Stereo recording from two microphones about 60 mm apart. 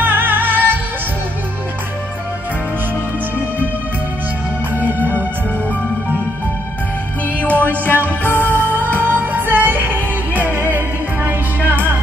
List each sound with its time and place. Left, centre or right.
0.0 s music: right
4.7 s music: right
7.3 s music: left
8.5 s music: right